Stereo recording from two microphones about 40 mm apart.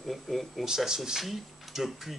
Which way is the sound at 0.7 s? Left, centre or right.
Centre.